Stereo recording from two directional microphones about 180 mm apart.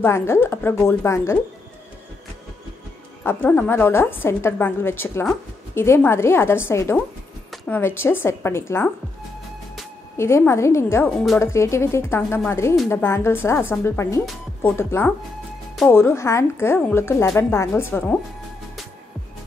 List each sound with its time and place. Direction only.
0.0 s a woman's voice: 15° left (ahead or behind)
3.3 s a woman's voice: 10° left (ahead or behind)
10.1 s a woman's voice: 15° left (ahead or behind)